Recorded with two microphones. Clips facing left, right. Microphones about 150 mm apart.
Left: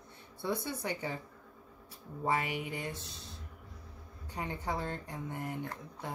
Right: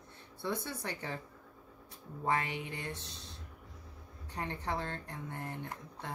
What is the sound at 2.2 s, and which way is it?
Speech, 10° left (ahead or behind).